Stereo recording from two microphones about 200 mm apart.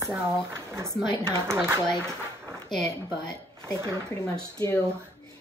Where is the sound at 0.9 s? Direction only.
20° left (ahead or behind).